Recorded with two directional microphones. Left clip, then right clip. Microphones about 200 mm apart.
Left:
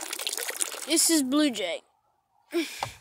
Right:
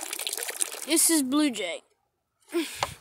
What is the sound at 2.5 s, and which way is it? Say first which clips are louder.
Gasp: even; 15° right (ahead or behind).